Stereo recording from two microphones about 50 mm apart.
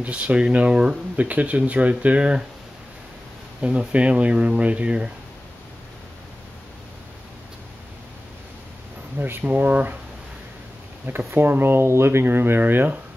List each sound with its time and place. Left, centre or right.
0.0 s speech: right
3.6 s speech: right
9.4 s speech: right
11.3 s speech: right